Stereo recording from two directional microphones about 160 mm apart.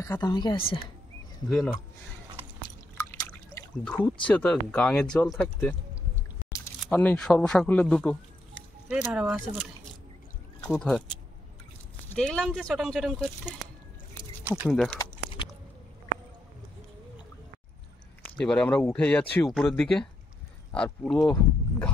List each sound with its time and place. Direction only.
0.0 s speech: 25° left (ahead or behind)
1.5 s speech: 5° left (ahead or behind)
3.8 s speech: 10° left (ahead or behind)
6.9 s speech: 5° left (ahead or behind)
8.8 s speech: 10° right (ahead or behind)
10.7 s speech: 5° left (ahead or behind)
12.2 s speech: 5° left (ahead or behind)
14.4 s a sound: 10° right (ahead or behind)
14.7 s speech: 5° left (ahead or behind)
18.2 s speech: 5° left (ahead or behind)